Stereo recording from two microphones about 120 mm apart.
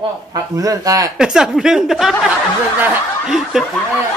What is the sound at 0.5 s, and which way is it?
Speech, 30° right (ahead or behind).